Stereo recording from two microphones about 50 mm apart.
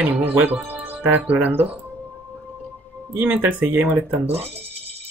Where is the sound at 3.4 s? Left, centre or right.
Right.